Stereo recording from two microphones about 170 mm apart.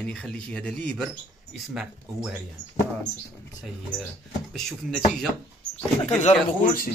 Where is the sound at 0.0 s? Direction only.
5° left (ahead or behind).